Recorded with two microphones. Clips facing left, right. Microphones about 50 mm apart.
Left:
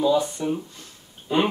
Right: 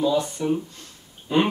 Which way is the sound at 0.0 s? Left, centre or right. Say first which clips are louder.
Left 1 dB; centre.